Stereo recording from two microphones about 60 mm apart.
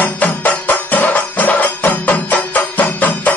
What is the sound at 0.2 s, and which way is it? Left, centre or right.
Music, left.